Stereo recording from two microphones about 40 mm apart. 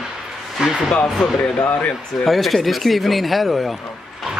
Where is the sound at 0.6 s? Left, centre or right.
Centre.